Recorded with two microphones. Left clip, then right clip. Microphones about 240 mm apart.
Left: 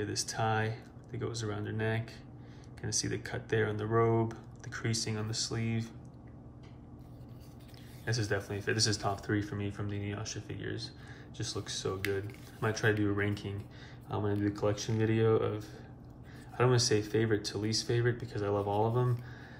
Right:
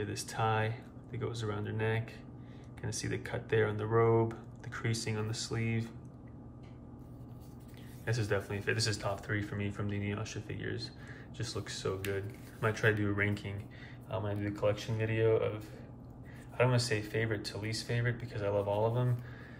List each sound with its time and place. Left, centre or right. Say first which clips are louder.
0.0 s speech: left 1 dB; centre
8.0 s speech: even; centre
14.0 s speech: left 4 dB; left